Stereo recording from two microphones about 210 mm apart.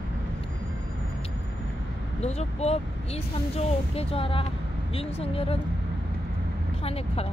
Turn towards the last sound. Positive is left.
turn(degrees=25)  # may be behind; listen again after turning